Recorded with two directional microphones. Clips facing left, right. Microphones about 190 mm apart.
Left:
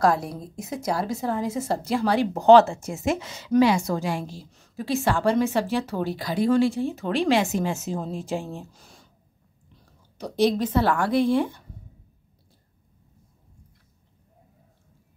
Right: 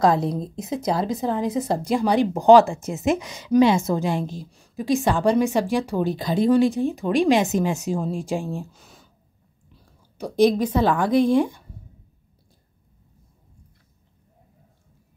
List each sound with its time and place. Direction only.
0.0 s a woman's voice: 20° right (ahead or behind)
8.7 s a sound: centre (ahead or behind)
10.1 s a woman's voice: 10° right (ahead or behind)